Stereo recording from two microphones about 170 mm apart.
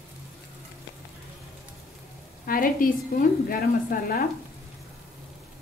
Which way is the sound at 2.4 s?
55° left (ahead or behind).